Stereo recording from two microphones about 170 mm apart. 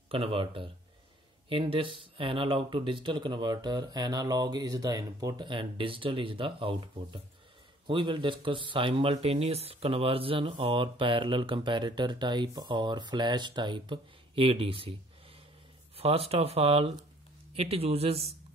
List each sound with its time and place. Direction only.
0.1 s speech: 35° right (ahead or behind)
16.0 s speech: 35° right (ahead or behind)